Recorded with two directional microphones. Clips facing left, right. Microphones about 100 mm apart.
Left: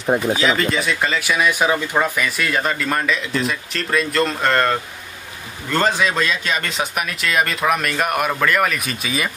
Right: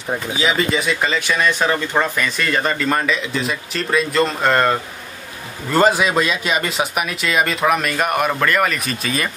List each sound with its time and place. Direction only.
0.0 s speech: 20° left (ahead or behind)
0.4 s speech: 5° right (ahead or behind)